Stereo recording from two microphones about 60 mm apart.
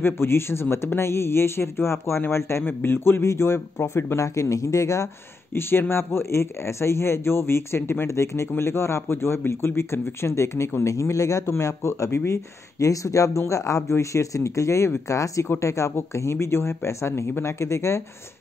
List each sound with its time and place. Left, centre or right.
0.0 s speech: left
5.5 s speech: left
11.4 s speech: left
12.3 s speech: left